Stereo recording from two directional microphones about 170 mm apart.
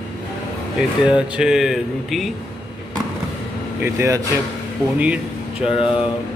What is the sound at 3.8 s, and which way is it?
Speech, 15° right (ahead or behind).